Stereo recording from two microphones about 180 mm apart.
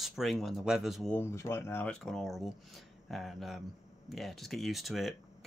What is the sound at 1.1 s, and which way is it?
Speech, 15° left (ahead or behind).